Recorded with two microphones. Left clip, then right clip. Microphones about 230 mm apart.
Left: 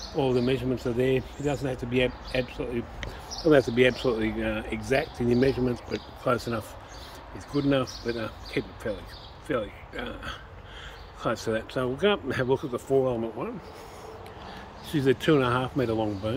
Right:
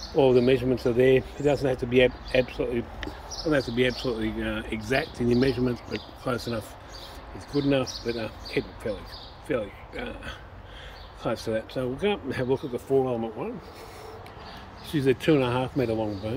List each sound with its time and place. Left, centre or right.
0.1 s speech: centre
3.6 s speech: centre
14.9 s speech: centre